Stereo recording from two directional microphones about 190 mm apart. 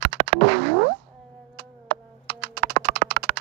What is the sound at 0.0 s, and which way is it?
Music, 60° right (ahead or behind).